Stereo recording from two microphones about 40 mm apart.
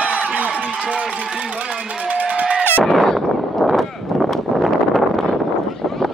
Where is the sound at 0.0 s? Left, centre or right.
Right.